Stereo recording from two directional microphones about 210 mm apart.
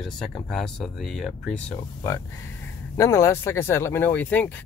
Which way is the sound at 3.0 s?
15° left (ahead or behind).